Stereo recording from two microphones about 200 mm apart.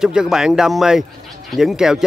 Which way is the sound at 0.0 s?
5° right (ahead or behind).